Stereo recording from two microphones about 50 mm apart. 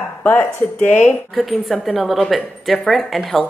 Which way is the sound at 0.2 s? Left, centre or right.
Left.